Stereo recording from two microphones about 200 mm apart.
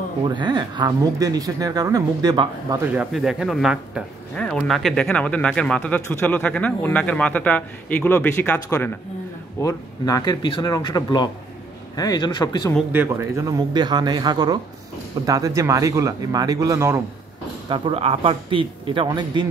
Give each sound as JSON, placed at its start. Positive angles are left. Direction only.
{"t": 0.2, "sound": "speech", "side_deg": -25}
{"t": 2.9, "sound": "speech", "side_deg": -5}
{"t": 12.9, "sound": "a man's voice", "side_deg": -15}
{"t": 17.6, "sound": "speech", "side_deg": -25}